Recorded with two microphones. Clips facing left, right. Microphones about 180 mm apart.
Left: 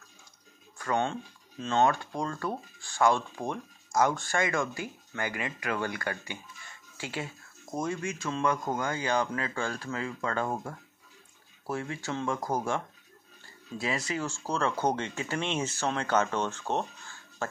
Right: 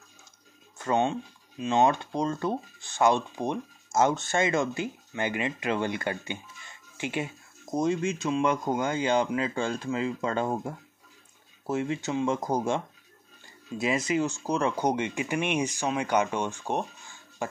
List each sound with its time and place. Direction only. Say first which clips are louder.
0.7 s speech: right 4 dB; 20° right (ahead or behind)